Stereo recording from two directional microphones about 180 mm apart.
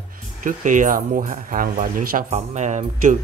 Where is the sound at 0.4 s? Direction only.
45° right (ahead or behind).